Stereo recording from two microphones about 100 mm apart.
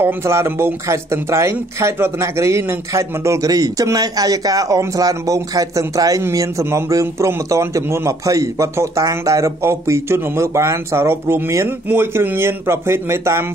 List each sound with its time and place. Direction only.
0.0 s a man's voice: 25° right (ahead or behind)